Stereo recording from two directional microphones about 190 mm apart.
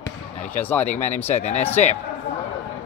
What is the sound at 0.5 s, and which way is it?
Speech, 10° left (ahead or behind).